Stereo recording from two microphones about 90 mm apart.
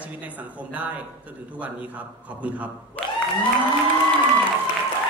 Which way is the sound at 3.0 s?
15° left (ahead or behind).